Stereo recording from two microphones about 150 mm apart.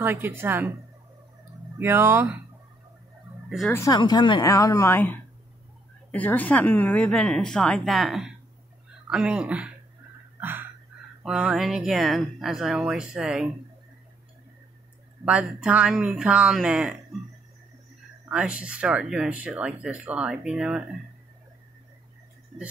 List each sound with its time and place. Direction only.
0.0 s speech: 15° right (ahead or behind)
1.8 s speech: 15° right (ahead or behind)
3.4 s speech: centre (ahead or behind)
3.9 s a woman's voice: 30° left (ahead or behind); by 9.7 s 5° right (ahead or behind)
10.4 s a sound: 15° right (ahead or behind)
11.2 s speech: centre (ahead or behind)
15.2 s speech: 5° right (ahead or behind)
18.3 s speech: 5° right (ahead or behind)